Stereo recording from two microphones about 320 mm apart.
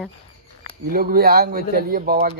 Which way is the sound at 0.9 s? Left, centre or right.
Right.